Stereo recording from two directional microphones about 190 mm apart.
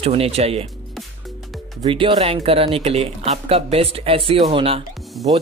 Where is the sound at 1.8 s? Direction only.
30° right (ahead or behind).